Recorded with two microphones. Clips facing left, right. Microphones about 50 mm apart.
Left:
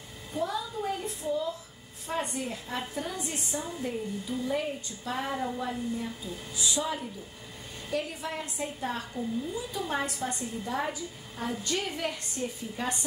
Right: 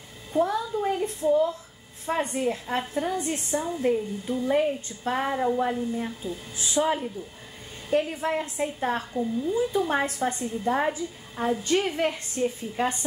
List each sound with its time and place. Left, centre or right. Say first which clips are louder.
0.4 s a child's voice: right 7 dB; right
0.7 s child singing: right 6 dB; right
2.0 s a woman's voice: right 7 dB; right
5.2 s a woman's voice: right 8 dB; right